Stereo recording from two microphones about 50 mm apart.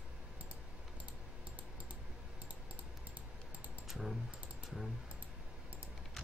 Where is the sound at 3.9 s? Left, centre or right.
Centre.